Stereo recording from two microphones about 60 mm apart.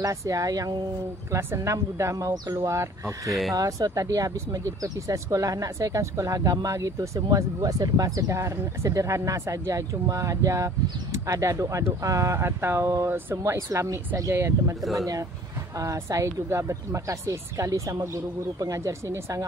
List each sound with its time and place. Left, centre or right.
0.0 s speech: right
1.3 s speech: right
3.5 s speech: right
8.4 s speech: right
13.7 s speech: right
15.8 s speech: right
16.3 s speech: right